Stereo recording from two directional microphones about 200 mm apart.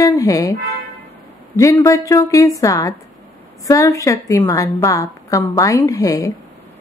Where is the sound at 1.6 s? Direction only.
15° left (ahead or behind).